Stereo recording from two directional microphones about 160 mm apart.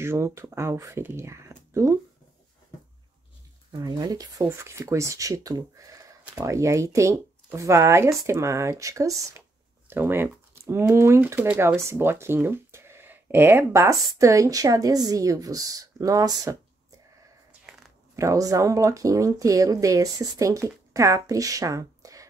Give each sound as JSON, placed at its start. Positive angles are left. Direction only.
{"t": 0.0, "sound": "speech", "side_deg": -15}
{"t": 3.7, "sound": "speech", "side_deg": -25}
{"t": 17.5, "sound": "a sound", "side_deg": -5}
{"t": 18.1, "sound": "speech", "side_deg": -20}